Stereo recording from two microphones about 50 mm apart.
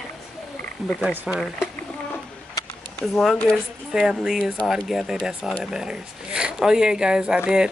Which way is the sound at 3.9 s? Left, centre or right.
Centre.